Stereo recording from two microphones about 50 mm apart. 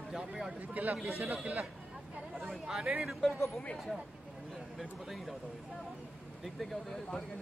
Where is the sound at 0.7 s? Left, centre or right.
Right.